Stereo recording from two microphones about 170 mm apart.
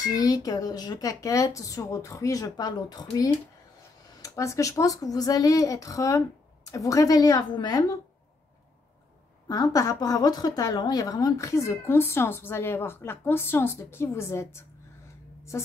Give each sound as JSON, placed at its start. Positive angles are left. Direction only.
{"t": 0.0, "sound": "speech", "side_deg": 20}
{"t": 9.5, "sound": "a woman's voice", "side_deg": 20}